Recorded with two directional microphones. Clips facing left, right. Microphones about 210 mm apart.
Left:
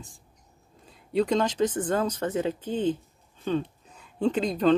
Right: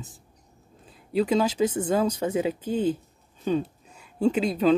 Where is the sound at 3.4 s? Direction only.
10° right (ahead or behind).